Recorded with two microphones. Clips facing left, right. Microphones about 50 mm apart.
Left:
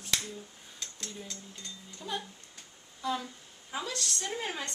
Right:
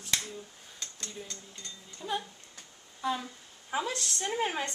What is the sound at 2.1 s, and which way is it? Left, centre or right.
Speech, centre.